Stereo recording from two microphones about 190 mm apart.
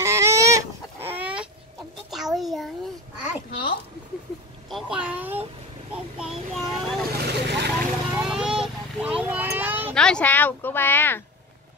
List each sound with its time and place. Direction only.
0.0 s chicken: 15° right (ahead or behind)
2.0 s a sound: centre (ahead or behind)
4.6 s a sound: centre (ahead or behind)
7.2 s vehicle: 60° right (ahead or behind)
8.1 s vehicle: 5° right (ahead or behind)
9.9 s speech: 5° left (ahead or behind)